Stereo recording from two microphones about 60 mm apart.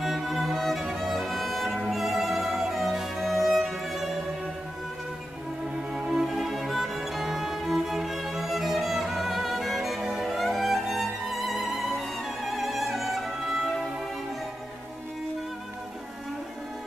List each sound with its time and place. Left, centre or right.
0.0 s music: centre
5.9 s music: centre